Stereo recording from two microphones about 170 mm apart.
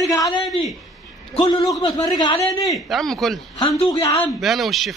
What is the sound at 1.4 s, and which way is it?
A man's voice, 30° left (ahead or behind).